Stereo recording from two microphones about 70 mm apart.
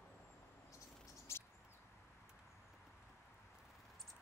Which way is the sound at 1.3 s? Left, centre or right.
Left.